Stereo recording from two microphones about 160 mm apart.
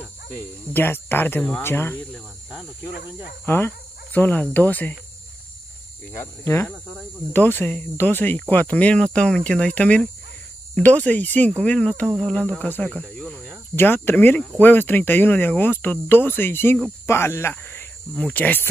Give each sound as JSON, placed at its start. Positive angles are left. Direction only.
{"t": 0.7, "sound": "speech", "side_deg": 15}
{"t": 3.4, "sound": "speech", "side_deg": 15}
{"t": 6.1, "sound": "speech", "side_deg": 15}
{"t": 13.7, "sound": "speech", "side_deg": 15}